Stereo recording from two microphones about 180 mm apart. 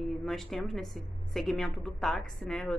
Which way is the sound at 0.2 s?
Centre (ahead or behind).